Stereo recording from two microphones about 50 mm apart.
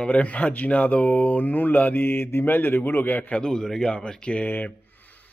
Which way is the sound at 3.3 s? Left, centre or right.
Centre.